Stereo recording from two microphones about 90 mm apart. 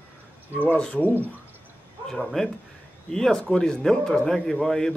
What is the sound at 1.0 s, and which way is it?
Speech, 20° right (ahead or behind).